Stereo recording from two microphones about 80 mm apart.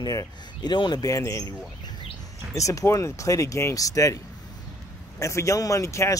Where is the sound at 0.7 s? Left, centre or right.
Left.